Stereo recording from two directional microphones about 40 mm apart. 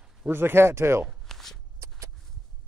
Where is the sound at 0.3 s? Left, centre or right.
Right.